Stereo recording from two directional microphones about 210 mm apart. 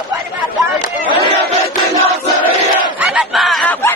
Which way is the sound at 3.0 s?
Centre (ahead or behind).